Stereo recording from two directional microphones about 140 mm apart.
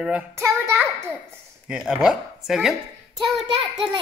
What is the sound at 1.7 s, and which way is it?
Speech, 5° right (ahead or behind).